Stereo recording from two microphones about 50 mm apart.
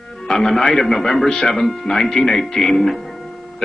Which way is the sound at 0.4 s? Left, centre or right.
Centre.